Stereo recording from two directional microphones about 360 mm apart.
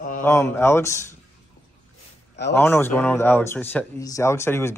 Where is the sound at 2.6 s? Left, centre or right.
Centre.